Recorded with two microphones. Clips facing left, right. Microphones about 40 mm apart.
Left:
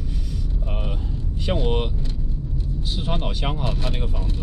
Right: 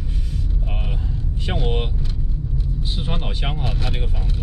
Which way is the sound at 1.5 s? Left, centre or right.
Centre.